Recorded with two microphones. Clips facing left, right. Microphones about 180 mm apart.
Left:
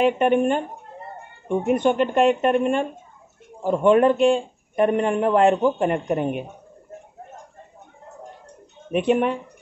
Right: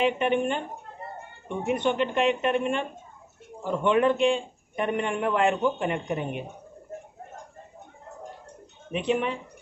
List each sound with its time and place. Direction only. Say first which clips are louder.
0.0 s a man's voice: left 6 dB; 45° left (ahead or behind)
1.7 s a man's voice: left 5 dB; 45° left (ahead or behind)
8.9 s a man's voice: left 6 dB; 55° left (ahead or behind)